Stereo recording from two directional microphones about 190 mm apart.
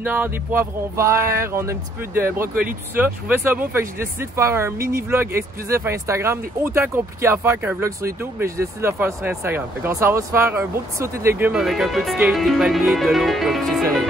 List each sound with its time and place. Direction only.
0.0 s speech: 10° right (ahead or behind)